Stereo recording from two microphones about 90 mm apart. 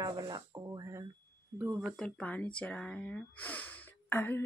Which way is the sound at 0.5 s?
35° right (ahead or behind).